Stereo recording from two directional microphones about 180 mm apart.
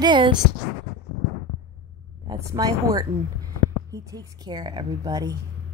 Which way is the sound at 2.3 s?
20° right (ahead or behind).